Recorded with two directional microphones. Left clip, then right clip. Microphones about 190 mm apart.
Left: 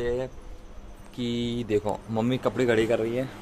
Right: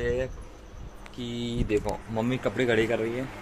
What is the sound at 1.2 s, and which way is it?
Speech, 55° left (ahead or behind).